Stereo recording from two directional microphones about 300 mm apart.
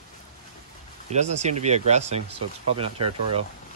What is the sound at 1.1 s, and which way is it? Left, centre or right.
Speech, right.